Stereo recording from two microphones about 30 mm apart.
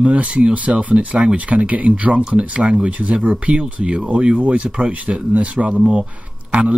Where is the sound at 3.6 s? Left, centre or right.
Right.